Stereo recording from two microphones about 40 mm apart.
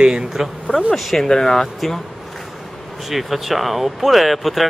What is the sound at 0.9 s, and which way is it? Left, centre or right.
Speech, centre.